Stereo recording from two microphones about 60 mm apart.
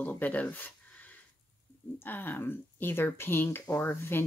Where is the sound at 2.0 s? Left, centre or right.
Left.